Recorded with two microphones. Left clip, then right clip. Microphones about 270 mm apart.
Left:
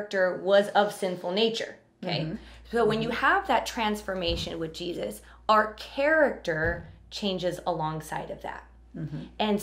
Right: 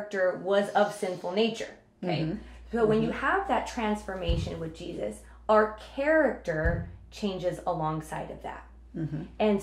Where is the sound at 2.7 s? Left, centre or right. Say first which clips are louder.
Even; left.